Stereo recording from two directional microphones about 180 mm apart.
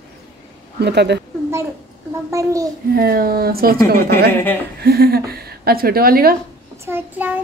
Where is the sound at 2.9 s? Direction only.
55° right (ahead or behind).